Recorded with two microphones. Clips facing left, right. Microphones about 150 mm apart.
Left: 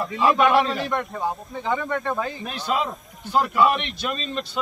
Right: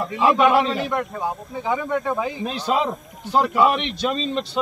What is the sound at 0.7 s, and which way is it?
Speech, 5° right (ahead or behind).